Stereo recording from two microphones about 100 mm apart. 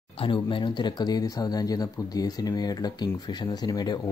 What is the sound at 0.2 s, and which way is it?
Speech, 55° left (ahead or behind).